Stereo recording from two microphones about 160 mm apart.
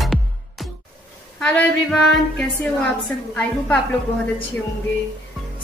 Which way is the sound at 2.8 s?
5° left (ahead or behind).